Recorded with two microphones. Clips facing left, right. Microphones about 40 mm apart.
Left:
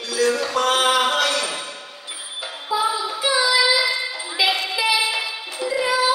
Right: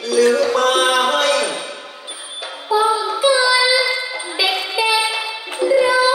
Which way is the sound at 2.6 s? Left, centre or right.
Centre.